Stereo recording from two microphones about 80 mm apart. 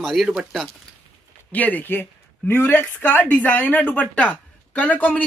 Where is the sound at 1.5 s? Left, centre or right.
Left.